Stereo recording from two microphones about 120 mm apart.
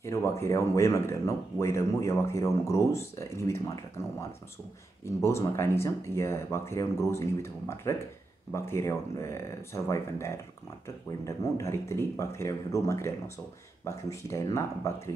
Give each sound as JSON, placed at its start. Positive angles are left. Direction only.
{"t": 0.0, "sound": "speech", "side_deg": 25}
{"t": 5.2, "sound": "speech", "side_deg": 20}